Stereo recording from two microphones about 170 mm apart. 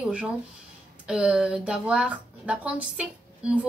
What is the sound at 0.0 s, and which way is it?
A woman's voice, 5° right (ahead or behind).